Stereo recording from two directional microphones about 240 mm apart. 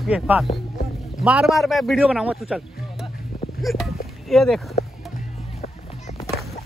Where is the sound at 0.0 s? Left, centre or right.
Centre.